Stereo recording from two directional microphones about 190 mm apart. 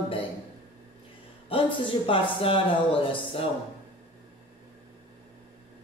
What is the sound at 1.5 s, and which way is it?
A man's voice, 25° left (ahead or behind).